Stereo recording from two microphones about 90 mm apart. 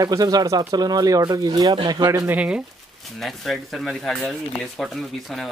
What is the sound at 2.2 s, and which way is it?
Speech, 15° right (ahead or behind).